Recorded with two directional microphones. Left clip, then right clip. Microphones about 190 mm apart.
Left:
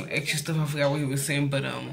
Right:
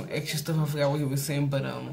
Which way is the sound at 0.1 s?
10° right (ahead or behind).